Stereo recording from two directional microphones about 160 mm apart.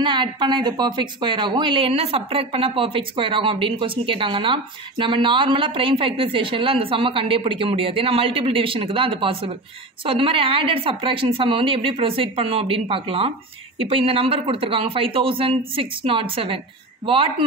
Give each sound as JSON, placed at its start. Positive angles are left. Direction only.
{"t": 0.0, "sound": "a woman's voice", "side_deg": -30}